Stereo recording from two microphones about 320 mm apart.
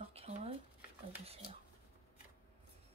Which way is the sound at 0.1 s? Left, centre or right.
Centre.